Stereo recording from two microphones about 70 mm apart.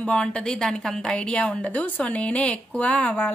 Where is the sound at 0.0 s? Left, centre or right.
Centre.